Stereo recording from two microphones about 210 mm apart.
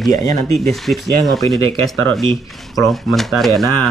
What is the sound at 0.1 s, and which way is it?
Speech, 15° left (ahead or behind).